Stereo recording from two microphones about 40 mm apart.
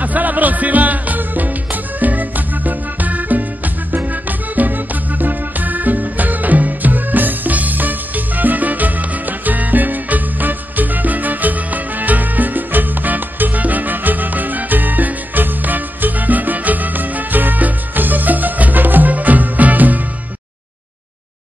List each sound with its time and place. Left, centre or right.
0.0 s music: right
4.6 s music: right